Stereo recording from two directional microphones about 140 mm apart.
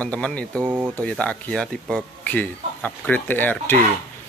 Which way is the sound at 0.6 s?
15° right (ahead or behind).